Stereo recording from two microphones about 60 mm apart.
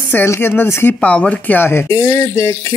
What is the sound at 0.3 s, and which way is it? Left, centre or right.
Speech, left.